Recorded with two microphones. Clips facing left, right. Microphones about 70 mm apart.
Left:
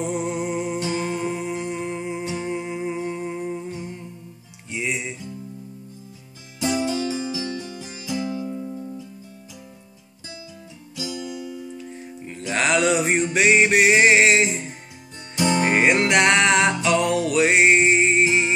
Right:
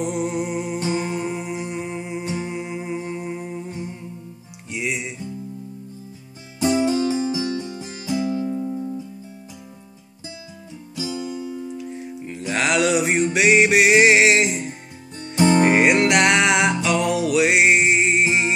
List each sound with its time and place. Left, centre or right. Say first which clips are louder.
0.0 s music: right 1 dB; centre
0.7 s music: right 1 dB; right; by 3.7 s centre
3.7 s music: right 1 dB; centre
4.6 s music: right 1 dB; centre
6.6 s music: right 4 dB; right
8.5 s music: right 5 dB; centre
11.0 s music: right 3 dB; right
11.8 s music: right 4 dB; centre
15.3 s music: right 5 dB; right
15.7 s music: right 2 dB; centre